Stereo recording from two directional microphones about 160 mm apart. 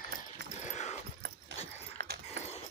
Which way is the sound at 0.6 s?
45° left (ahead or behind).